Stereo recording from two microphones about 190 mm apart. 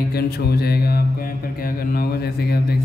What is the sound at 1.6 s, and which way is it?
Speech, 50° left (ahead or behind).